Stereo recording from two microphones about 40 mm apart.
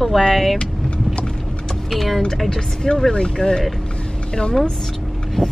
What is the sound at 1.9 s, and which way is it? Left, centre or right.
Speech, centre.